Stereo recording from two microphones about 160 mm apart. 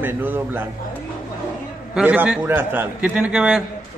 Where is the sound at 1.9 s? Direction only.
10° right (ahead or behind).